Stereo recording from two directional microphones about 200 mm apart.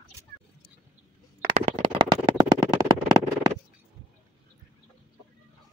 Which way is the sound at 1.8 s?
20° right (ahead or behind).